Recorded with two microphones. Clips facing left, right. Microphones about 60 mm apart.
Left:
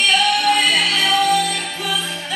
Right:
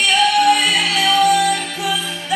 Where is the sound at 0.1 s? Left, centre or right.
Centre.